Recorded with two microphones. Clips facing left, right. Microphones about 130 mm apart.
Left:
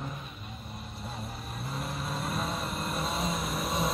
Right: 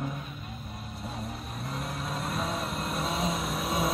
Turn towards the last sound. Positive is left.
turn(degrees=0)  # may be behind; listen again after turning